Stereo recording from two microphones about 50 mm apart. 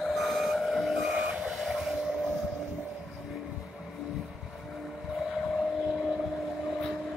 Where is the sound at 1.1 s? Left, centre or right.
Right.